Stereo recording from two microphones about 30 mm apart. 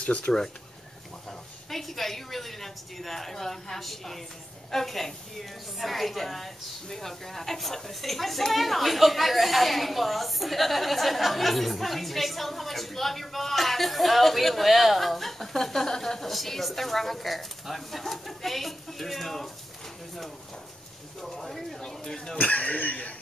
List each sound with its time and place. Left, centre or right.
0.0 s speech: left
1.7 s a woman's voice: centre
21.2 s a woman's voice: centre
21.8 s a woman's voice: centre
22.4 s speech: left